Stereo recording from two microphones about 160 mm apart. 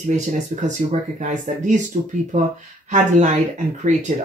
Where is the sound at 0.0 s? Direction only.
50° right (ahead or behind).